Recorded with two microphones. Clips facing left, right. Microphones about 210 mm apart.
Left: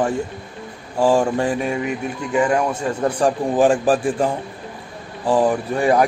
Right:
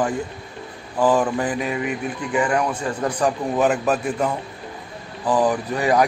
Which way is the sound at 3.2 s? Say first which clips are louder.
Left 3 dB; 30° left (ahead or behind).